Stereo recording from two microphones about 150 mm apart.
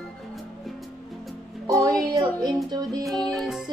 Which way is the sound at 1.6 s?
25° right (ahead or behind).